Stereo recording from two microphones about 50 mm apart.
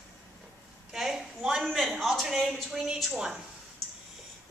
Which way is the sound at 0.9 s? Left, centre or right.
Centre.